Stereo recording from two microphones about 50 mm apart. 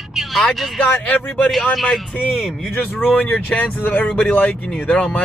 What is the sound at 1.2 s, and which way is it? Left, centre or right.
Speech, centre.